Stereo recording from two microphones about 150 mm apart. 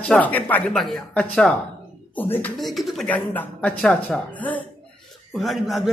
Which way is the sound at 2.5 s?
Centre (ahead or behind).